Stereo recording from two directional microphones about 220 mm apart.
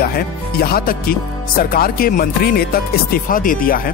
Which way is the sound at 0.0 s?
45° left (ahead or behind).